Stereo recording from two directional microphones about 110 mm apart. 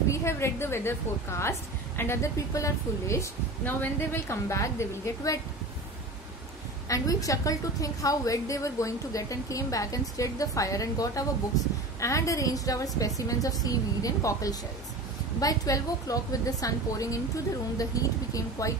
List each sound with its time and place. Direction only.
0.1 s a woman's voice: 25° left (ahead or behind)
6.9 s a woman's voice: 30° left (ahead or behind)